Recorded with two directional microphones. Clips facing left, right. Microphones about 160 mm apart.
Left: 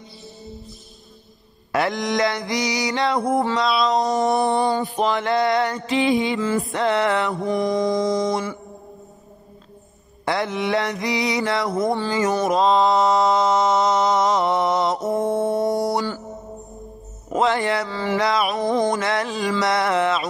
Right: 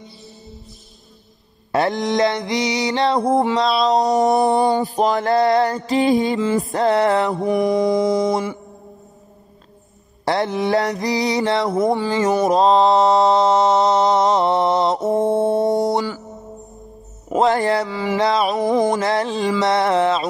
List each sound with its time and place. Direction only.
1.7 s mantra: 30° right (ahead or behind)
3.8 s mantra: 35° right (ahead or behind)
4.4 s mantra: 25° right (ahead or behind)
4.8 s mantra: 40° right (ahead or behind)
6.6 s music: 45° right (ahead or behind)
7.4 s mantra: 10° right (ahead or behind)
8.3 s mantra: 25° right (ahead or behind)
10.2 s mantra: 35° right (ahead or behind)
17.5 s a sound: 45° right (ahead or behind)
17.8 s a sound: 10° right (ahead or behind)
18.1 s a sound: 25° right (ahead or behind)
18.6 s mantra: 5° right (ahead or behind)
18.9 s mantra: 30° right (ahead or behind)